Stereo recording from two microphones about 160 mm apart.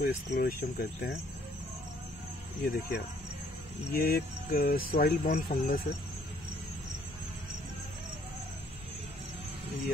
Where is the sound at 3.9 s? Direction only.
70° left (ahead or behind).